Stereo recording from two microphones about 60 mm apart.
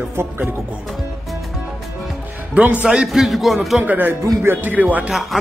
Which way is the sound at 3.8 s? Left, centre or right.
Right.